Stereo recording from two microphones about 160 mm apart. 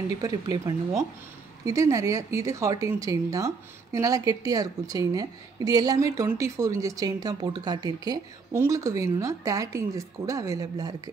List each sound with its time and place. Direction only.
0.2 s speech: 20° right (ahead or behind)